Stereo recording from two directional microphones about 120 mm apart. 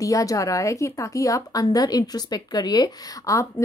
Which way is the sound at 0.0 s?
30° left (ahead or behind).